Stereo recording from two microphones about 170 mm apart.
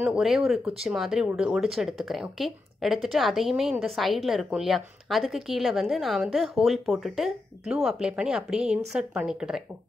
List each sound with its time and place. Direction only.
0.0 s a woman's voice: centre (ahead or behind)